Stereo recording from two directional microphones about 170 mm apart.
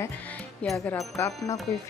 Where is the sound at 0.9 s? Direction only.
20° left (ahead or behind).